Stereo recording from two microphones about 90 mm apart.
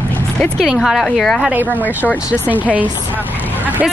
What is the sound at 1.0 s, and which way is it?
Speech, 5° left (ahead or behind).